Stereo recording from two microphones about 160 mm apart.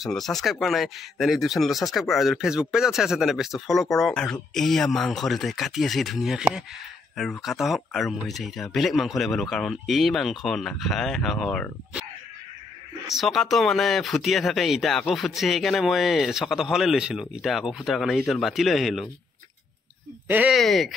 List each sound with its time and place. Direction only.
0.0 s speech: centre (ahead or behind)
13.1 s speech: centre (ahead or behind)
20.2 s speech: 10° right (ahead or behind)
20.5 s speech: centre (ahead or behind)